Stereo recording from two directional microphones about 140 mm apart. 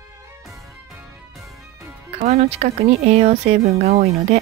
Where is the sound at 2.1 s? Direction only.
50° right (ahead or behind).